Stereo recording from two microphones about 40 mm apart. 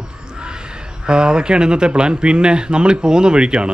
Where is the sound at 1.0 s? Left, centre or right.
Right.